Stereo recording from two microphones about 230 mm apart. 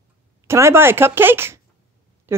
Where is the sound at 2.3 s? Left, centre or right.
Centre.